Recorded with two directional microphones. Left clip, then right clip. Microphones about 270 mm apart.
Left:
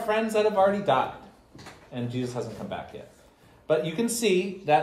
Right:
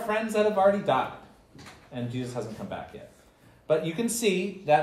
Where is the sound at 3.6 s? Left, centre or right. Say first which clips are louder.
Left 1 dB; centre.